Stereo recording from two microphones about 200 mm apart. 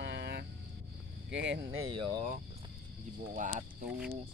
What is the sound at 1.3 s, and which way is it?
Speech, 65° right (ahead or behind).